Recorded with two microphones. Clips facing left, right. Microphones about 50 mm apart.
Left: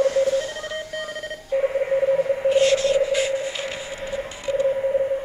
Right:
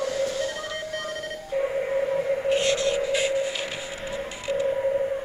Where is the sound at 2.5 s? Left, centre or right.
Centre.